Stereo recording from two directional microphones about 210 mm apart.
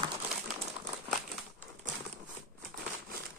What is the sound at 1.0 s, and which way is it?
Crumpling, centre (ahead or behind).